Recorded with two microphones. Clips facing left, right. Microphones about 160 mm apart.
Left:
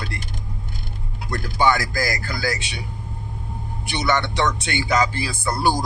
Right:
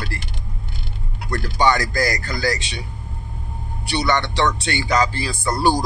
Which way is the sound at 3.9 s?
10° left (ahead or behind).